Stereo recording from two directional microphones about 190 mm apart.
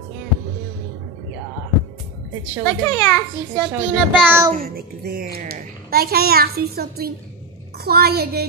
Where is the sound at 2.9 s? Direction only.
15° left (ahead or behind).